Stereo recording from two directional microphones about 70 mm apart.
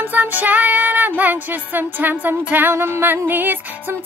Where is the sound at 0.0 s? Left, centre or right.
Right.